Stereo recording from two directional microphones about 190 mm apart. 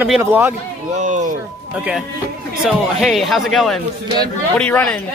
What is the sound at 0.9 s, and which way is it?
Speech, 40° right (ahead or behind).